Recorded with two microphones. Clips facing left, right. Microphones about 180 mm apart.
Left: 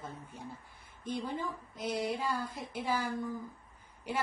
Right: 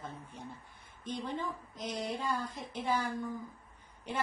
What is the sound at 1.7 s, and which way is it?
A woman's voice, 10° left (ahead or behind).